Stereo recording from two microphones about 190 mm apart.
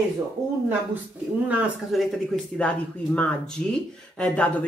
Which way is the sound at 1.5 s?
Centre (ahead or behind).